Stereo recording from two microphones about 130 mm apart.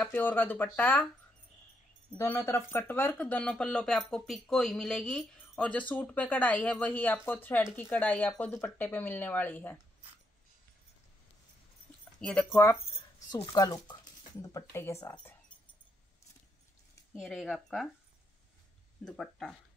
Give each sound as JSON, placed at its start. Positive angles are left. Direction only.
{"t": 0.1, "sound": "speech", "side_deg": 15}
{"t": 2.1, "sound": "speech", "side_deg": 20}
{"t": 12.2, "sound": "speech", "side_deg": 10}
{"t": 13.6, "sound": "speech", "side_deg": 30}
{"t": 17.1, "sound": "speech", "side_deg": 0}
{"t": 19.0, "sound": "speech", "side_deg": 5}